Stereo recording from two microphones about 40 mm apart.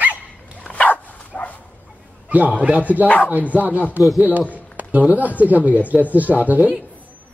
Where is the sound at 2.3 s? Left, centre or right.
Right.